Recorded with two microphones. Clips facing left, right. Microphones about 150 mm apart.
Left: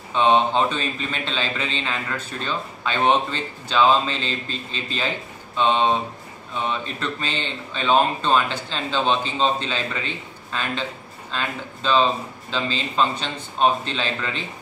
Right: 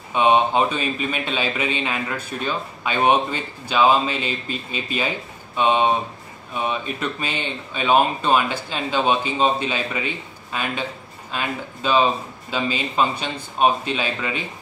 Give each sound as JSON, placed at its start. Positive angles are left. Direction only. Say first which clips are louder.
{"t": 0.1, "sound": "a man's voice", "louder": "right 1 dB", "side_deg": -10}